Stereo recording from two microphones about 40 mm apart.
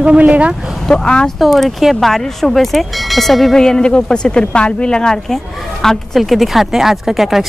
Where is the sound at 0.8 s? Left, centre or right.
Left.